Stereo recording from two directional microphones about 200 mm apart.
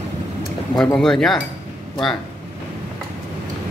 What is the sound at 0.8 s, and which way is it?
Speech, centre (ahead or behind).